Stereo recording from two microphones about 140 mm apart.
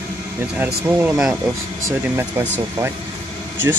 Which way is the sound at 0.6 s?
10° right (ahead or behind).